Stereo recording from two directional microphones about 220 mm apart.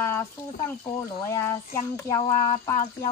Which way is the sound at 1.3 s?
10° left (ahead or behind).